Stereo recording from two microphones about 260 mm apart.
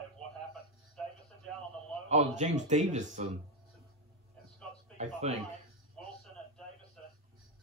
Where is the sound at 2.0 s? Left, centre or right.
Right.